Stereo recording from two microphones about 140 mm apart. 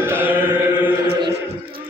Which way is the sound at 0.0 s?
15° right (ahead or behind).